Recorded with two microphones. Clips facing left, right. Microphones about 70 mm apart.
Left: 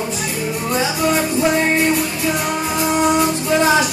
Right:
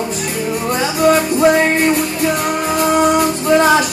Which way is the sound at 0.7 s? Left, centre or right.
Right.